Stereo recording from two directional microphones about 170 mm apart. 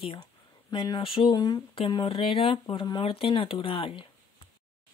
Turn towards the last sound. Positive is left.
turn(degrees=30)  # may be behind; listen again after turning